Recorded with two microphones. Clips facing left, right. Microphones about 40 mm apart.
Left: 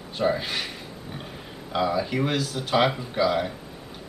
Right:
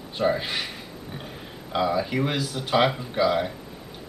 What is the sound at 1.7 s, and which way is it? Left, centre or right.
Speech, centre.